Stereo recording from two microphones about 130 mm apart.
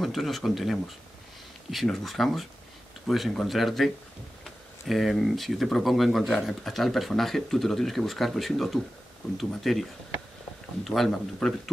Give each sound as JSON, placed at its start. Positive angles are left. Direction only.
{"t": 0.0, "sound": "speech", "side_deg": 0}